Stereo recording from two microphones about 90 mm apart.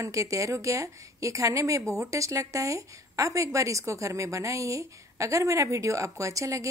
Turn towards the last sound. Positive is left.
turn(degrees=-40)  # may be behind; listen again after turning